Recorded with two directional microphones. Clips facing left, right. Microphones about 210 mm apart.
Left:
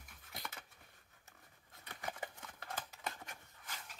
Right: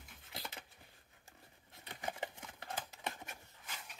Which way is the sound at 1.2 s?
25° right (ahead or behind).